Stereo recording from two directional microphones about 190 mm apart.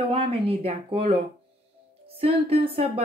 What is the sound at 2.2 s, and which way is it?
Speech, 30° right (ahead or behind).